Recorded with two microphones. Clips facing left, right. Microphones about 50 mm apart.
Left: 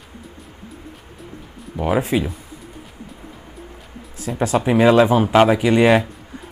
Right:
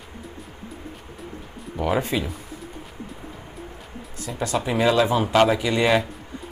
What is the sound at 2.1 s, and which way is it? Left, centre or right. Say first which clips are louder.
Speech: left 5 dB; left.